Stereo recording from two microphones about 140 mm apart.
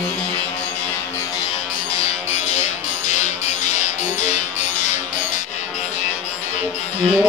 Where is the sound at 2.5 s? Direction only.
55° left (ahead or behind).